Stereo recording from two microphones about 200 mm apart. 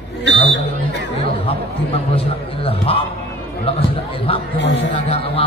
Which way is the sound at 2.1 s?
30° left (ahead or behind).